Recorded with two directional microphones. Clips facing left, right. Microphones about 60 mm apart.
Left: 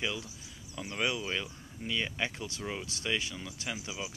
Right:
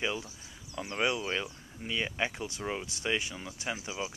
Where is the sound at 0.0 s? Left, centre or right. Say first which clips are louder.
Right 2 dB; right.